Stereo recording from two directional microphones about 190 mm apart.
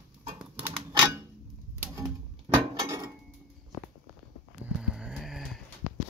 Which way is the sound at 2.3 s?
25° right (ahead or behind).